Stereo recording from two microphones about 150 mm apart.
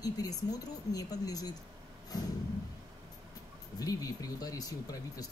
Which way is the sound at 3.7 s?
25° left (ahead or behind).